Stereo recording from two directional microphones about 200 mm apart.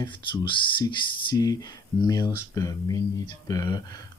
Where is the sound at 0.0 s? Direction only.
20° left (ahead or behind).